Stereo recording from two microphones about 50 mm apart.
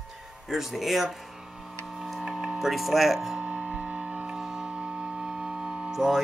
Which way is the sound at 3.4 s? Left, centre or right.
Right.